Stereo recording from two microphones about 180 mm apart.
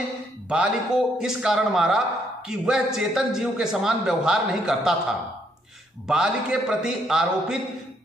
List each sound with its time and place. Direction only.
0.5 s a man's voice: 5° right (ahead or behind)
6.0 s a man's voice: 5° right (ahead or behind)